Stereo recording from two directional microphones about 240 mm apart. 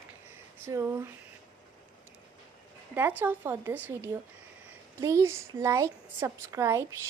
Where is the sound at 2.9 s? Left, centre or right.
Centre.